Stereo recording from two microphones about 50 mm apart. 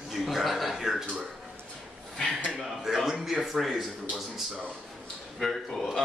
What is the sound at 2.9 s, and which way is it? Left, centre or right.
Speech, centre.